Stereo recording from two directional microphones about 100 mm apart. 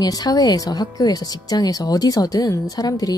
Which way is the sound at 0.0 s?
40° left (ahead or behind).